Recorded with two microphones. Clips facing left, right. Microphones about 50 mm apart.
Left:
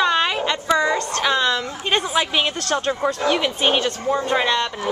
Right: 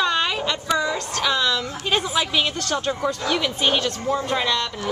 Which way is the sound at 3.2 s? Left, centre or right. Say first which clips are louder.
Left 3 dB; centre.